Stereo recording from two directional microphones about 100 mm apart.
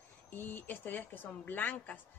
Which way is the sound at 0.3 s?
20° left (ahead or behind).